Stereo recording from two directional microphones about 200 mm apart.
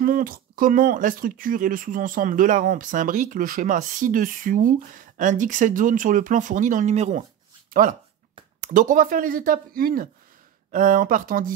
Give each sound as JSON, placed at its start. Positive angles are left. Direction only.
{"t": 0.0, "sound": "speech", "side_deg": -45}
{"t": 8.5, "sound": "speech", "side_deg": -40}